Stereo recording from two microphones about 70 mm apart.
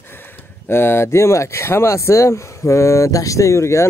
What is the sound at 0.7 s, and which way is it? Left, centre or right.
Speech, left.